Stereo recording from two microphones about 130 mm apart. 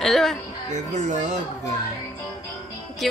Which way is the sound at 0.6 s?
65° right (ahead or behind).